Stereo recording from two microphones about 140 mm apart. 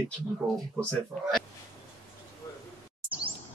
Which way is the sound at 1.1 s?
15° right (ahead or behind).